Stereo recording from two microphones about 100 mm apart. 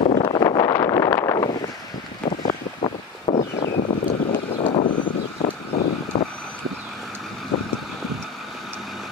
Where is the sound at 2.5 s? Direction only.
80° left.